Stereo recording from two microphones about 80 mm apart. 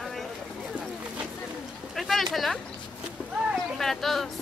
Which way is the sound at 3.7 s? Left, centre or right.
Centre.